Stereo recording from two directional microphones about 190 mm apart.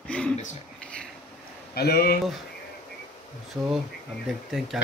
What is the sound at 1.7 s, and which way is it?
Speech, 55° left (ahead or behind).